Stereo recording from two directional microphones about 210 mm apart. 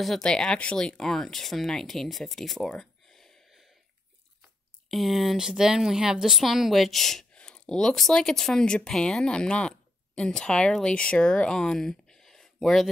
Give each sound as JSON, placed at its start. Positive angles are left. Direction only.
{"t": 0.0, "sound": "speech", "side_deg": 0}
{"t": 4.9, "sound": "a woman's voice", "side_deg": 0}